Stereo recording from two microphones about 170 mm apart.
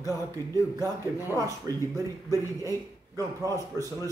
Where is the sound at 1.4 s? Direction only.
20° right (ahead or behind).